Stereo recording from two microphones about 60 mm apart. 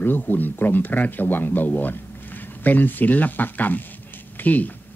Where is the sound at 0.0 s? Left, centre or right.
Left.